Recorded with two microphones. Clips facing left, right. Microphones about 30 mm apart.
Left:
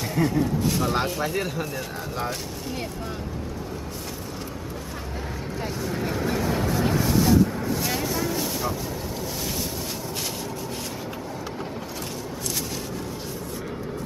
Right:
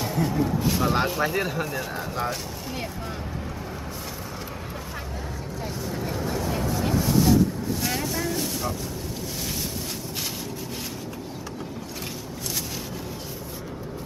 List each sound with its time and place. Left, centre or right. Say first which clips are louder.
0.0 s speech: left 1 dB; centre
5.9 s vehicle: left 3 dB; centre
6.7 s vehicle: right 1 dB; centre